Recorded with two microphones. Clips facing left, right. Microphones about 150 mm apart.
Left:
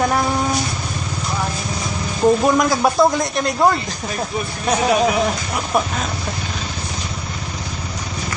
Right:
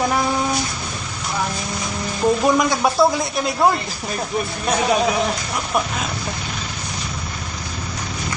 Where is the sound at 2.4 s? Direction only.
Centre (ahead or behind).